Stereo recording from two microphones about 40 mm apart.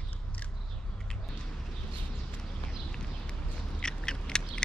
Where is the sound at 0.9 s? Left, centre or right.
Centre.